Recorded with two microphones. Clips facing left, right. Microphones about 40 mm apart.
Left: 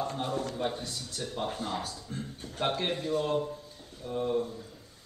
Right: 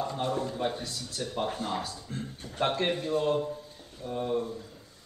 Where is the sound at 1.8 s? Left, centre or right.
Right.